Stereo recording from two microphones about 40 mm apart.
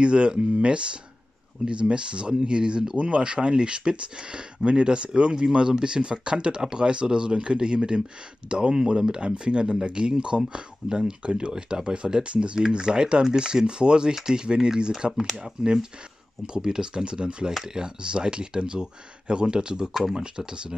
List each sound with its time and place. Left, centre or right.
0.0 s speech: right
15.1 s speech: centre
19.9 s speech: centre